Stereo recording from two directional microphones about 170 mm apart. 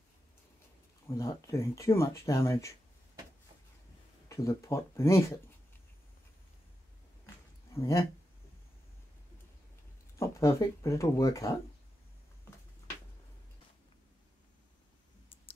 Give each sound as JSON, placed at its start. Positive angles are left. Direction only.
{"t": 1.0, "sound": "speech", "side_deg": 20}
{"t": 4.3, "sound": "speech", "side_deg": 15}
{"t": 7.7, "sound": "speech", "side_deg": 15}
{"t": 10.1, "sound": "speech", "side_deg": 15}